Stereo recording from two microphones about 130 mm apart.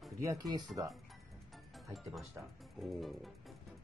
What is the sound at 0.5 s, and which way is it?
Speech, 30° right (ahead or behind).